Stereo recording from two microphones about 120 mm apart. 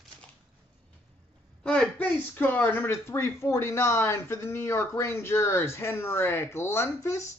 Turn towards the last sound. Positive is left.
turn(degrees=25)  # may be behind; listen again after turning